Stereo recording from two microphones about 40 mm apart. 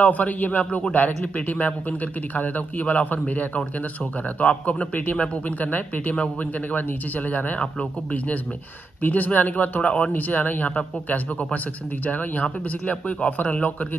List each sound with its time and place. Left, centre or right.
0.0 s a man's voice: left
9.0 s a man's voice: left
10.1 s speech: left
12.1 s a man's voice: left